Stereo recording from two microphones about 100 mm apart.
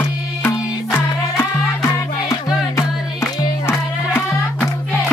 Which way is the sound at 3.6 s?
25° left (ahead or behind).